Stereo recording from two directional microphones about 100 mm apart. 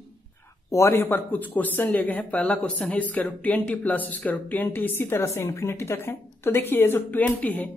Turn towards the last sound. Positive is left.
turn(degrees=15)  # may be behind; listen again after turning